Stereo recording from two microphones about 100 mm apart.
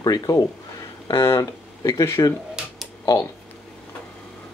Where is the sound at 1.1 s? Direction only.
25° left (ahead or behind).